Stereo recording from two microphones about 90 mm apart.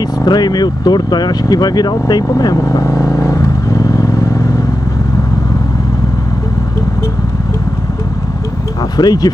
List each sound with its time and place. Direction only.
0.2 s speech: 50° left (ahead or behind)
8.9 s speech: 50° left (ahead or behind)